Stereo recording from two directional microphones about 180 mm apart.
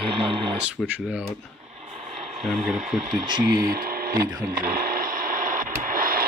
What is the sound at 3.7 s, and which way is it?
Speech, 55° right (ahead or behind).